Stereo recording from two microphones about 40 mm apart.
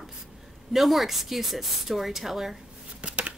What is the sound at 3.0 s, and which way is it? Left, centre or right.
Shuffling cards, right.